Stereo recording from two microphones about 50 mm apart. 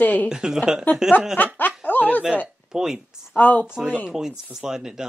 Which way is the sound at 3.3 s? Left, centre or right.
Left.